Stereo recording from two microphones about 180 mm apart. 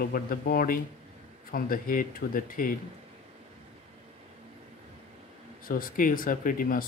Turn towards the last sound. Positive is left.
turn(degrees=50)  # may be behind; listen again after turning